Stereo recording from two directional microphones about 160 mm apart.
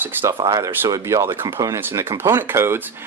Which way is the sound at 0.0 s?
15° right (ahead or behind).